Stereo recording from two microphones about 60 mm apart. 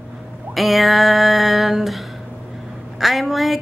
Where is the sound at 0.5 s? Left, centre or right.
Centre.